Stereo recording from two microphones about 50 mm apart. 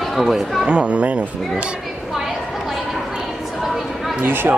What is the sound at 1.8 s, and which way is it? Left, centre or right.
Chatter, centre.